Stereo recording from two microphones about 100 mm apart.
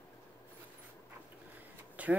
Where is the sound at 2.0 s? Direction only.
15° right (ahead or behind).